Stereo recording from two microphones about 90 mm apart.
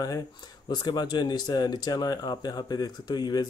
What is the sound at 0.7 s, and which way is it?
Speech, 55° left (ahead or behind).